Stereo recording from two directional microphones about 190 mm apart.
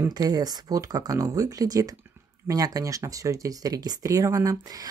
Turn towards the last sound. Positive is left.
turn(degrees=-20)  # may be behind; listen again after turning